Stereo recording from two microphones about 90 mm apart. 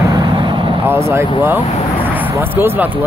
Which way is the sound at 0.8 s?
30° right (ahead or behind).